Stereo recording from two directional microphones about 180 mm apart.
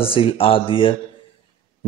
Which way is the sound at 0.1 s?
30° left (ahead or behind).